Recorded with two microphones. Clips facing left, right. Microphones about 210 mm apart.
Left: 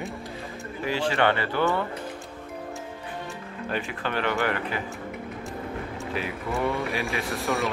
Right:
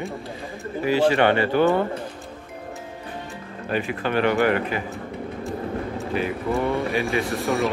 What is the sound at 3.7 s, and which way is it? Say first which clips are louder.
Speech: right 6 dB; 15° right (ahead or behind).